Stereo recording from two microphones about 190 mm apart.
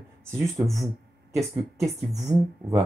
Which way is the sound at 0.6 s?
Centre (ahead or behind).